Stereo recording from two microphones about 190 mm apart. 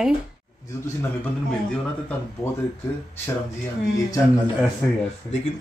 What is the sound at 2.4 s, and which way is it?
Speech, 15° left (ahead or behind).